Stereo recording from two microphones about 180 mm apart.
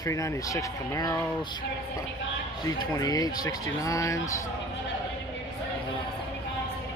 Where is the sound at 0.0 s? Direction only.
20° left (ahead or behind).